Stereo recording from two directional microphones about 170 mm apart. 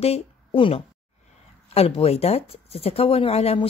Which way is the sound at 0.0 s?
35° left (ahead or behind).